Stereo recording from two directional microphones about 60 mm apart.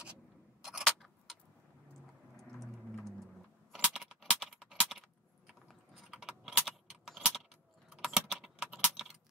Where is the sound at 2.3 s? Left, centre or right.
Centre.